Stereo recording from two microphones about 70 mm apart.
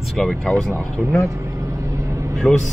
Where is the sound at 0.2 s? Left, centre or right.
Centre.